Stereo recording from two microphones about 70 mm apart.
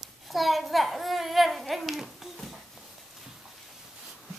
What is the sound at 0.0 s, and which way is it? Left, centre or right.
A child's voice, centre.